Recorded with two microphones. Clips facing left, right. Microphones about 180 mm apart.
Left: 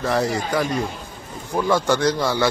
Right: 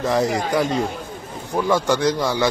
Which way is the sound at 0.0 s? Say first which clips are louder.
Right 2 dB; 15° right (ahead or behind).